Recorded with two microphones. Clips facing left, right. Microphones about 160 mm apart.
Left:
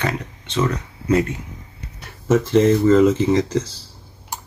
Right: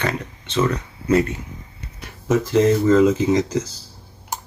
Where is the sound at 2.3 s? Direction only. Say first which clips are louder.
Left 1 dB; centre (ahead or behind).